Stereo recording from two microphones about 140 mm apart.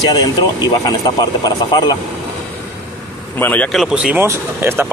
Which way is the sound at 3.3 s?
10° left (ahead or behind).